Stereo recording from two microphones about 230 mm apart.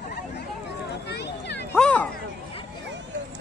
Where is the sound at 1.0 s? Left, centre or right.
Left.